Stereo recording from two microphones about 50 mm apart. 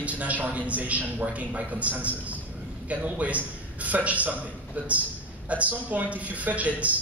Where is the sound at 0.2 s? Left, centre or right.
Right.